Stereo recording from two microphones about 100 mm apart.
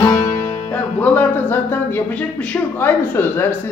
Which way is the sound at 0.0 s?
35° left (ahead or behind).